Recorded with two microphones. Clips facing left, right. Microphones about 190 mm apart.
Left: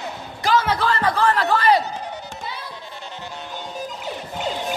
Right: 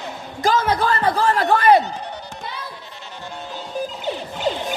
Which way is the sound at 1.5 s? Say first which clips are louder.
Right 6 dB; 55° right (ahead or behind).